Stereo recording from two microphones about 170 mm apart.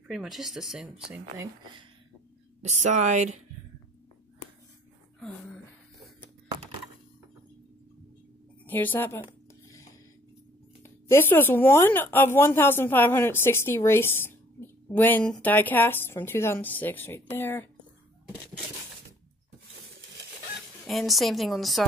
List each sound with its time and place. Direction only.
0.1 s speech: centre (ahead or behind)
2.6 s speech: 45° right (ahead or behind)
8.6 s a woman's voice: 10° left (ahead or behind)
10.8 s speech: 15° left (ahead or behind)
19.7 s a sound: 90° right
20.8 s speech: centre (ahead or behind)